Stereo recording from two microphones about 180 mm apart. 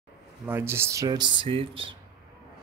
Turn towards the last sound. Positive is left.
turn(degrees=-30)  # may be behind; listen again after turning